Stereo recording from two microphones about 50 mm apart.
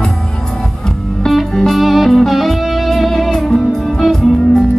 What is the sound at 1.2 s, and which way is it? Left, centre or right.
Music, centre.